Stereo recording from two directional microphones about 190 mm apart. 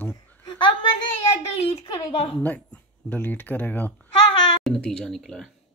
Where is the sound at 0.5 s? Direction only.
25° left (ahead or behind).